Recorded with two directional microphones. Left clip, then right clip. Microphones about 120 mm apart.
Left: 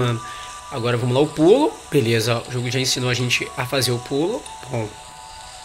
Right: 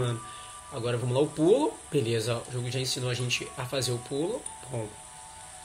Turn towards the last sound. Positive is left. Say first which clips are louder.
# left 9 dB
turn(degrees=30)  # may be behind; listen again after turning